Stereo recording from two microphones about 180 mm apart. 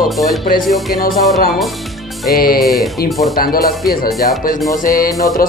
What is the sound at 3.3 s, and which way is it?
Speech, 55° left (ahead or behind).